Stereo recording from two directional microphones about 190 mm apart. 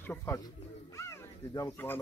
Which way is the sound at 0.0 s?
10° left (ahead or behind).